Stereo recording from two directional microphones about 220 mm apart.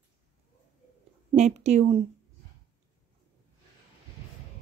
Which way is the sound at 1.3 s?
30° right (ahead or behind).